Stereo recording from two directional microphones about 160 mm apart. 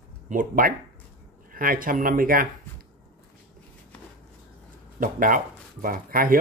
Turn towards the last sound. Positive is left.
turn(degrees=-65)  # may be behind; listen again after turning